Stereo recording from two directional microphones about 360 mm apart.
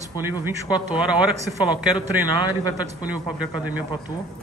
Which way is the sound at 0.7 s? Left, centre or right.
Centre.